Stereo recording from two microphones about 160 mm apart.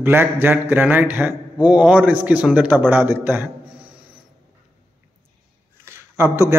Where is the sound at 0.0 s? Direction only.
15° right (ahead or behind).